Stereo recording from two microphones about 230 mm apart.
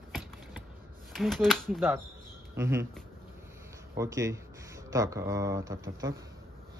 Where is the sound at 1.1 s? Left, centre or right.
Centre.